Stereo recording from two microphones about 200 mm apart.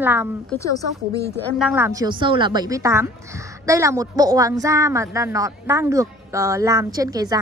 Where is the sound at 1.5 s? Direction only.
5° right (ahead or behind).